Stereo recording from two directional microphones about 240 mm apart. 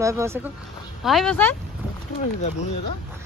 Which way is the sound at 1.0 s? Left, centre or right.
Centre.